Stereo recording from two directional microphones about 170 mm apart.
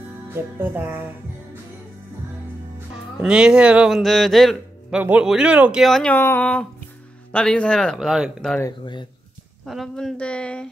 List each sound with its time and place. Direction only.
0.3 s music: 10° right (ahead or behind)
3.2 s a man's voice: 5° right (ahead or behind)
6.1 s a sound: 10° left (ahead or behind)
7.3 s a man's voice: 5° left (ahead or behind)
8.5 s speech: 25° left (ahead or behind)
9.7 s a man's voice: centre (ahead or behind)